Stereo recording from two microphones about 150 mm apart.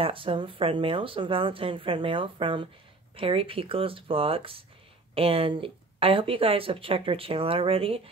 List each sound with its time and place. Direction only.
0.0 s speech: 35° right (ahead or behind)